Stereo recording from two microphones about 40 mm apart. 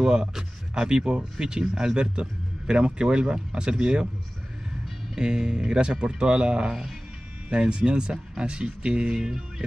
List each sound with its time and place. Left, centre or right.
0.0 s a man's voice: right
5.1 s a man's voice: centre
9.0 s speech: centre